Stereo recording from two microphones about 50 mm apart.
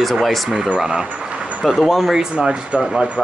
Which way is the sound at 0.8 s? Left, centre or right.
Centre.